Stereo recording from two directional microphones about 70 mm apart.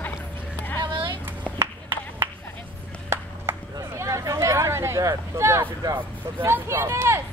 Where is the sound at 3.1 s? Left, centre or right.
Right.